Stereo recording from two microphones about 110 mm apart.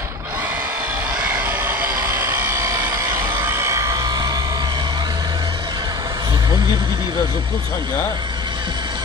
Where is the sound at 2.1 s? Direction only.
25° right (ahead or behind); by 3.4 s 40° right (ahead or behind).